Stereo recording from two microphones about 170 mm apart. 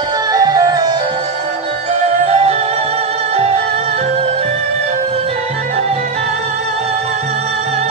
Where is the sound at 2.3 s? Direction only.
40° right (ahead or behind).